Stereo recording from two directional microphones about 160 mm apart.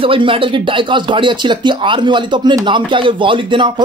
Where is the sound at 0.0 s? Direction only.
35° right (ahead or behind).